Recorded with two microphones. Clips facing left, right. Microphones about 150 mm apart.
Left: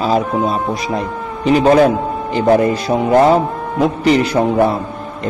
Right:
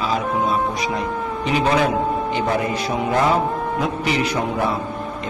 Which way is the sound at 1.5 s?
40° left (ahead or behind).